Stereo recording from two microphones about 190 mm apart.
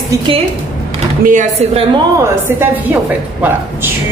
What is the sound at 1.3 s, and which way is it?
Speech, 40° right (ahead or behind).